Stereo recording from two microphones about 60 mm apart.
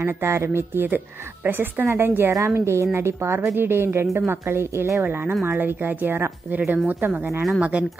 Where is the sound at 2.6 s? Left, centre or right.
Right.